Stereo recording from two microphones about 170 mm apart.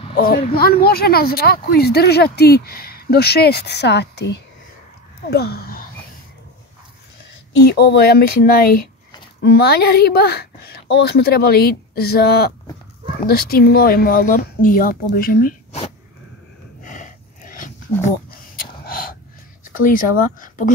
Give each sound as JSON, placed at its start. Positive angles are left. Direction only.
{"t": 0.1, "sound": "speech", "side_deg": 60}
{"t": 5.2, "sound": "speech", "side_deg": 70}
{"t": 7.7, "sound": "speech", "side_deg": 75}
{"t": 16.8, "sound": "a sound", "side_deg": 50}
{"t": 18.6, "sound": "snort", "side_deg": 55}
{"t": 19.6, "sound": "speech", "side_deg": 55}